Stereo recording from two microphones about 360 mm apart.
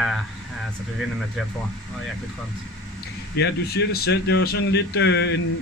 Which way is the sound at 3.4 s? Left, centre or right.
Left.